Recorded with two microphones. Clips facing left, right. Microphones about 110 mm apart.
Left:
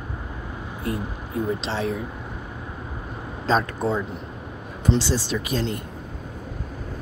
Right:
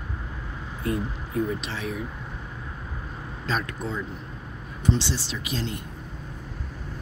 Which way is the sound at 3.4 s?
35° left (ahead or behind).